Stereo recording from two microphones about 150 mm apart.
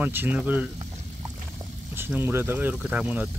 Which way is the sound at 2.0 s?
15° right (ahead or behind).